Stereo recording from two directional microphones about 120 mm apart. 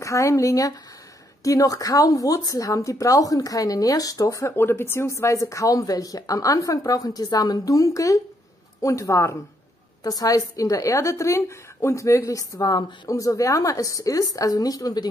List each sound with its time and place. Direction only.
0.0 s speech: 25° left (ahead or behind)